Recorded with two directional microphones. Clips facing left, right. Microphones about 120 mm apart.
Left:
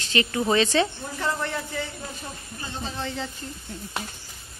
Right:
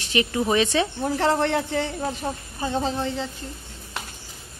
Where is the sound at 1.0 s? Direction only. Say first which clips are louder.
Right 7 dB; 75° right (ahead or behind).